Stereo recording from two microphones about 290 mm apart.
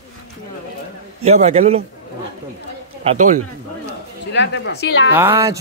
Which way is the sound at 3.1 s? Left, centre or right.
Right.